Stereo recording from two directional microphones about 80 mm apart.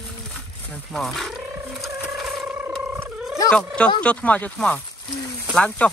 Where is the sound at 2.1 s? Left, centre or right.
Centre.